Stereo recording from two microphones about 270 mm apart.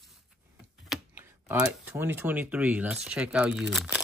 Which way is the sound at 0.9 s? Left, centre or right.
Centre.